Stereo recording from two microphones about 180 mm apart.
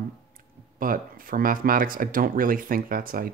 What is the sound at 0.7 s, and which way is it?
Speech, 50° right (ahead or behind).